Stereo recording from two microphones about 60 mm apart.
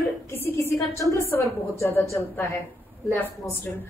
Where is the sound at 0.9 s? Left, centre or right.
Left.